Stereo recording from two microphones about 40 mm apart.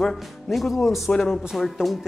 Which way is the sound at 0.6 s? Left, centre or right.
Centre.